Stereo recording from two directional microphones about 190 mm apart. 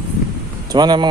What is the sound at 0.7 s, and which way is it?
Speech, 20° right (ahead or behind).